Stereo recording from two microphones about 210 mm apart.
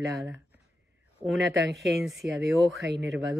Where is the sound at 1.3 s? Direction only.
60° right (ahead or behind).